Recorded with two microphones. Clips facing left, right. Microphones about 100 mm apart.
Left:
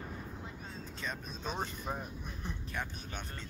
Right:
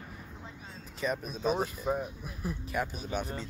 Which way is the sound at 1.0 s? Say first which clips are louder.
Right 11 dB; 10° right (ahead or behind).